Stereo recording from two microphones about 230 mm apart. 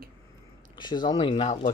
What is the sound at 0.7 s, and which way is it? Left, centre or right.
Speech, centre.